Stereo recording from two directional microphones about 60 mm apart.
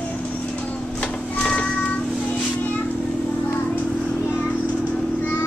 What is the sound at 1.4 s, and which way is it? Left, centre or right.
Child singing, centre.